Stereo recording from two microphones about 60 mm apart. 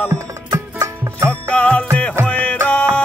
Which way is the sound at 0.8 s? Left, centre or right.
Right.